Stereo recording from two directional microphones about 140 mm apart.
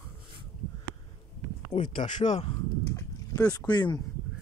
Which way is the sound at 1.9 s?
60° left (ahead or behind).